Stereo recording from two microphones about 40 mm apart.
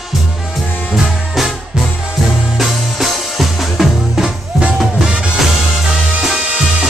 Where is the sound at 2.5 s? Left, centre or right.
Centre.